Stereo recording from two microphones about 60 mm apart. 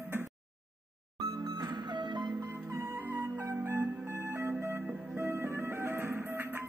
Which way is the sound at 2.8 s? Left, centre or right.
Right.